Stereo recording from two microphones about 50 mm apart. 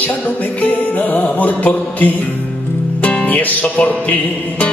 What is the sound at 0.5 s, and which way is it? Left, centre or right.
Music, left.